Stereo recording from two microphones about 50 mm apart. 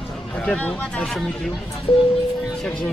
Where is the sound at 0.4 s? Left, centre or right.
Left.